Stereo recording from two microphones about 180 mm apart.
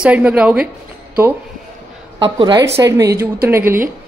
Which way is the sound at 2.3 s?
25° right (ahead or behind).